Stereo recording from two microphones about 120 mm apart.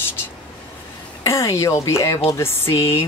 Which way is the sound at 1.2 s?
25° left (ahead or behind).